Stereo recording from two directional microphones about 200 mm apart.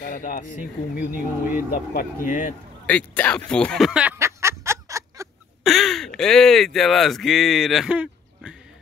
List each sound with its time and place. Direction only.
0.0 s speech: 40° left (ahead or behind)
2.9 s a sound: 5° left (ahead or behind); by 5.3 s 15° right (ahead or behind)
5.6 s speech: centre (ahead or behind)